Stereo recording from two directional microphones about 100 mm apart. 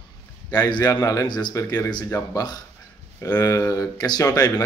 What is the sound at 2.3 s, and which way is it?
A man's voice, 45° left (ahead or behind).